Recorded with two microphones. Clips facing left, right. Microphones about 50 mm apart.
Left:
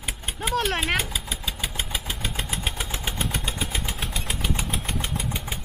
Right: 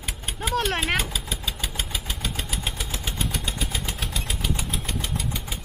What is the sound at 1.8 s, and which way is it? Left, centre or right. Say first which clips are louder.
Vehicle: left 1 dB; centre.